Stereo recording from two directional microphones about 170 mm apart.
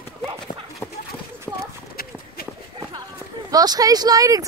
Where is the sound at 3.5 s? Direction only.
20° right (ahead or behind).